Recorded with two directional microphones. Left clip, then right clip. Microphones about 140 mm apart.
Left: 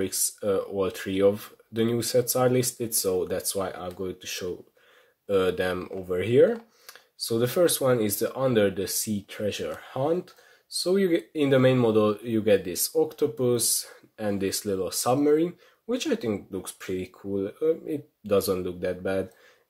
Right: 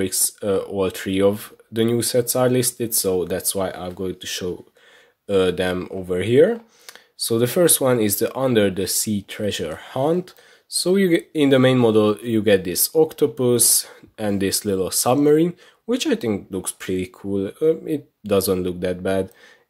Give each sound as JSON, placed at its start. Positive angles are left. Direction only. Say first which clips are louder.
{"t": 0.0, "sound": "speech", "louder": "right 5 dB", "side_deg": -30}